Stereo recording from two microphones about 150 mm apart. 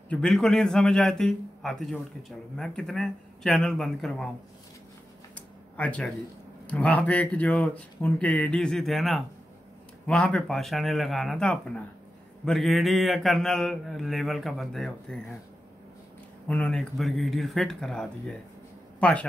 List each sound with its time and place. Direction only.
0.1 s a man's voice: 5° left (ahead or behind)
5.3 s a sound: 10° left (ahead or behind)
6.7 s a man's voice: 10° left (ahead or behind)
16.4 s a man's voice: 5° left (ahead or behind)